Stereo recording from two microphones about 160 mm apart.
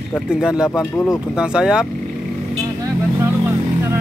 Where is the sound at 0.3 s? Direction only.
5° right (ahead or behind).